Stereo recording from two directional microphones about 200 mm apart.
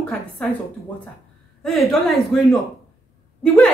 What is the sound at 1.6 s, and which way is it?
A woman's voice, centre (ahead or behind).